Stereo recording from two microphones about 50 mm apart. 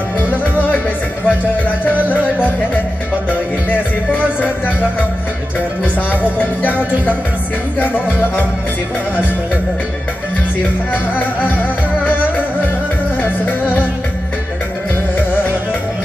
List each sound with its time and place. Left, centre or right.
1.2 s music: left
6.3 s music: left
7.8 s music: left
10.9 s music: left
15.1 s music: left